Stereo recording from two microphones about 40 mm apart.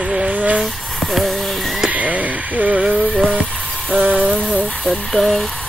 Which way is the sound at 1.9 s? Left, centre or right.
Right.